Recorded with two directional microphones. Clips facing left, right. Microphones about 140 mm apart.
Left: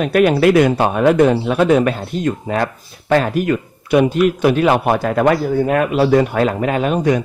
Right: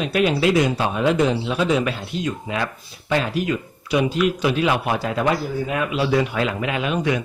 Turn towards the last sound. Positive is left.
turn(degrees=40)  # may be behind; listen again after turning